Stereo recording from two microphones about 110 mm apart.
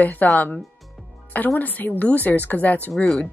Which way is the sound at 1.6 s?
15° left (ahead or behind).